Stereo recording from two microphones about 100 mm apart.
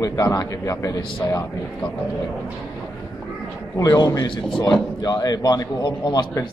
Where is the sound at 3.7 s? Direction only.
40° left (ahead or behind).